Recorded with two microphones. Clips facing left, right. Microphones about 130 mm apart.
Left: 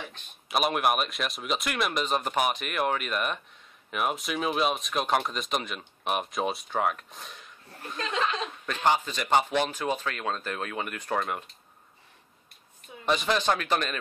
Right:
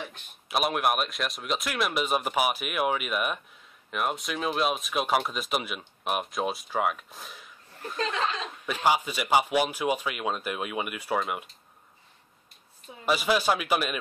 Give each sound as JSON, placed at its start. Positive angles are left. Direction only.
{"t": 0.1, "sound": "speech", "side_deg": 0}
{"t": 8.6, "sound": "speech", "side_deg": -10}
{"t": 13.0, "sound": "speech", "side_deg": -5}